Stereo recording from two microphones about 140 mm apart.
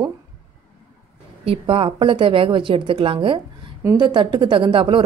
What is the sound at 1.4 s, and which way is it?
Speech, 40° right (ahead or behind).